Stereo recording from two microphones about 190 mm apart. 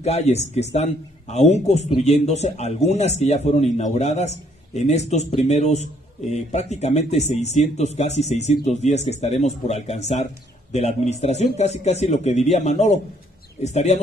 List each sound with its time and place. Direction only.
0.0 s a man's voice: 35° left (ahead or behind)